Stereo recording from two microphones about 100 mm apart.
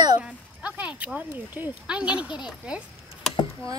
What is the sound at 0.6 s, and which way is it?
Speech, 10° right (ahead or behind).